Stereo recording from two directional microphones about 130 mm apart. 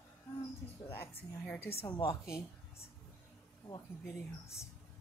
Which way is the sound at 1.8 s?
40° left (ahead or behind).